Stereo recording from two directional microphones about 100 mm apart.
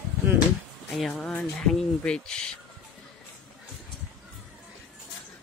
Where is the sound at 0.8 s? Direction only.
Centre (ahead or behind).